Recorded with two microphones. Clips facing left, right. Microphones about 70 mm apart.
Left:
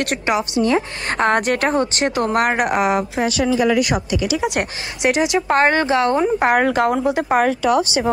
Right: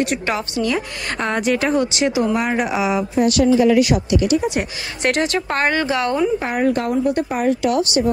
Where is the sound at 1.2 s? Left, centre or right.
Left.